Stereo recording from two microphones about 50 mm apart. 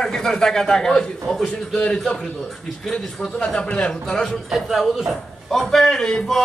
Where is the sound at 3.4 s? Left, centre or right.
Centre.